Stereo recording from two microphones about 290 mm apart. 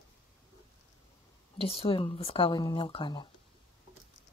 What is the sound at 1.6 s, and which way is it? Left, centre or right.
A woman's voice, centre.